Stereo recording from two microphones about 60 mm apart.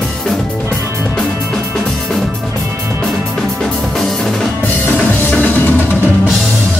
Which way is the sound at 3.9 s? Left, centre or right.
Centre.